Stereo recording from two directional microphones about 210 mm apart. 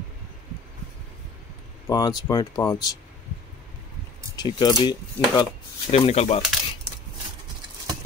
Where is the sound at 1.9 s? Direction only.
20° left (ahead or behind).